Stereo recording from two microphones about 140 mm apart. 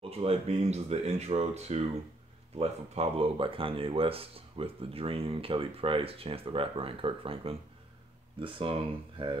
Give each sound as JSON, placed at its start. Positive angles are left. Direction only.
{"t": 0.0, "sound": "speech", "side_deg": -45}